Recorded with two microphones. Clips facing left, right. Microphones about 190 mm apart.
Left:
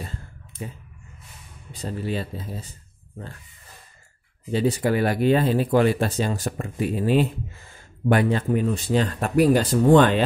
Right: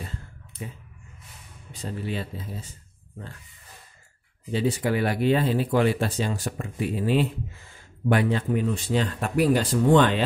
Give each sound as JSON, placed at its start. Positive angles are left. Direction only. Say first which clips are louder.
{"t": 1.7, "sound": "speech", "louder": "left 3 dB", "side_deg": 35}
{"t": 4.5, "sound": "speech", "louder": "left 3 dB", "side_deg": 40}